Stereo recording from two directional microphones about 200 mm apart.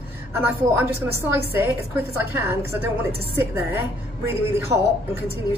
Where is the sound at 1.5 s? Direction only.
10° right (ahead or behind).